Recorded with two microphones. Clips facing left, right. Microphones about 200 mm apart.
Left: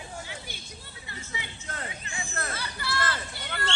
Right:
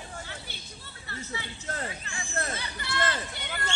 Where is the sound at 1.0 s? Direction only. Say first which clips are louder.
Right 3 dB; 15° left (ahead or behind).